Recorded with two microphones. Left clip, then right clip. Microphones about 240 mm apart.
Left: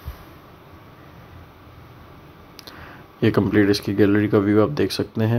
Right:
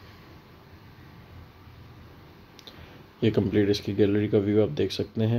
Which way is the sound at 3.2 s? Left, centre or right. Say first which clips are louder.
Left 6 dB; centre.